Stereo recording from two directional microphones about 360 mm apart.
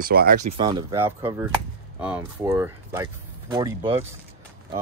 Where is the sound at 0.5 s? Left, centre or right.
Centre.